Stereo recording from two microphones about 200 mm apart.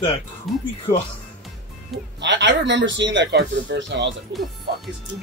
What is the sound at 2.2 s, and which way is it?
Speech, 60° right (ahead or behind).